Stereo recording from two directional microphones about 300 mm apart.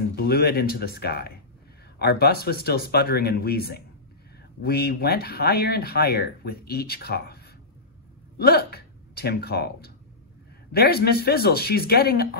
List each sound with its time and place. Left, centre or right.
0.1 s speech: left
8.4 s speech: left